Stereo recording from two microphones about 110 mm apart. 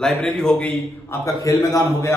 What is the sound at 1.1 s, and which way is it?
Speech, 30° left (ahead or behind).